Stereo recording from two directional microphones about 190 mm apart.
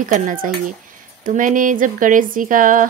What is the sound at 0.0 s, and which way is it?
A woman's voice, 45° right (ahead or behind).